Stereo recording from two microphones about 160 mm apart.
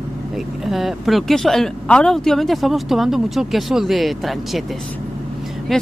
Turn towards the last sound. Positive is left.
turn(degrees=0)  # may be behind; listen again after turning